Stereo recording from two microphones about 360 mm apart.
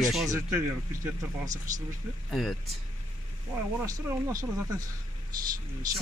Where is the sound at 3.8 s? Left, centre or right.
Centre.